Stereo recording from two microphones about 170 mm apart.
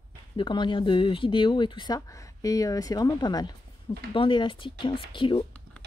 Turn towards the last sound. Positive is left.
turn(degrees=30)  # may be behind; listen again after turning